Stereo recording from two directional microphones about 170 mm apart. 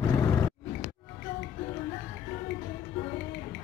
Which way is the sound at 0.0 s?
20° left (ahead or behind).